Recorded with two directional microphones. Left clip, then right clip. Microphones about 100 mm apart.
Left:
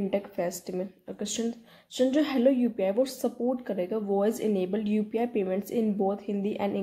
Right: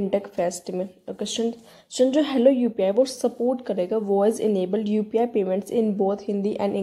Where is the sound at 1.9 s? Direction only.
25° right (ahead or behind).